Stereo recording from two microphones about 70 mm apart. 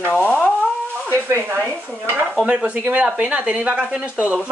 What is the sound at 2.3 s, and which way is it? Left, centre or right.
Speech, centre.